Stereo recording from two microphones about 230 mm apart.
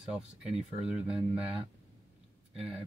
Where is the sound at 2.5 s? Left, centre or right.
Centre.